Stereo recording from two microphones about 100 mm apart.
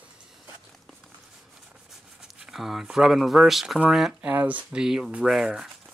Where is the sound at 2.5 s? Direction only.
5° right (ahead or behind).